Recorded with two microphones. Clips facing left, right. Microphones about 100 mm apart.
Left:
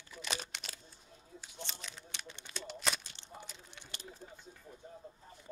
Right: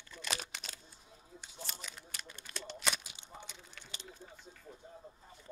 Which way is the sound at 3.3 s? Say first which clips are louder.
Left 1 dB; 5° left (ahead or behind).